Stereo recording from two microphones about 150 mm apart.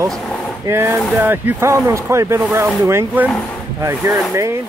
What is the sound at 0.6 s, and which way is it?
Speech, 15° right (ahead or behind).